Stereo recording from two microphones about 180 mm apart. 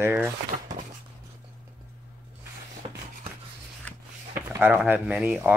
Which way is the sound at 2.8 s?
35° right (ahead or behind).